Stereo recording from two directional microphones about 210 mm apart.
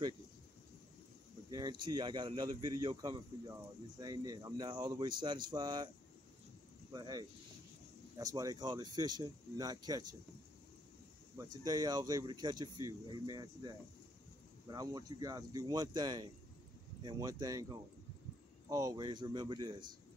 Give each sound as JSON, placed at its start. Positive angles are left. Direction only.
{"t": 1.5, "sound": "speech", "side_deg": -20}
{"t": 6.9, "sound": "speech", "side_deg": -20}
{"t": 11.3, "sound": "speech", "side_deg": -20}